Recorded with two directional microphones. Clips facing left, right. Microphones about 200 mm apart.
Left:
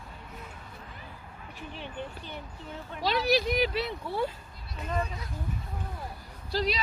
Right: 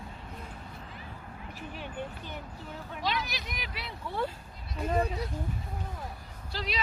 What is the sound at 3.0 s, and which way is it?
Speech, 35° left (ahead or behind).